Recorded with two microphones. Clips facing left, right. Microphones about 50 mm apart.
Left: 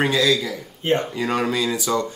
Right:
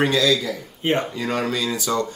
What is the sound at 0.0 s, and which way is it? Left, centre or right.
Speech, left.